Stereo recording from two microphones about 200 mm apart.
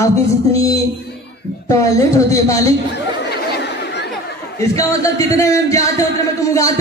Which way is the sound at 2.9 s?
55° left (ahead or behind).